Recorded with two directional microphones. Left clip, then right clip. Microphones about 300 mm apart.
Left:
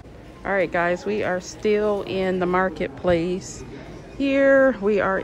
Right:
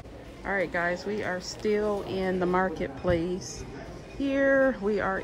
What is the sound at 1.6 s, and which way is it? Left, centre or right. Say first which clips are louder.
Speech: left 6 dB; centre.